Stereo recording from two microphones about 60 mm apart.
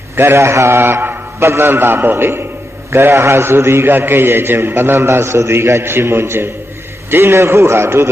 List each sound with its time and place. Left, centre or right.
0.1 s a man's voice: right